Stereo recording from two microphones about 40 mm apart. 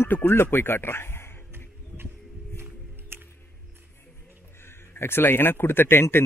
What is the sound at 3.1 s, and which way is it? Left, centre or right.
Music, right.